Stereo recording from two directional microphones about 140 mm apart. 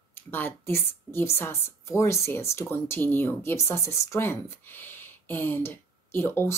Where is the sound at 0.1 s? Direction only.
15° left (ahead or behind).